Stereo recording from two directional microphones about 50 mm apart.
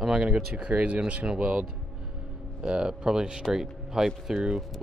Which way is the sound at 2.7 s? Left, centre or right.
Centre.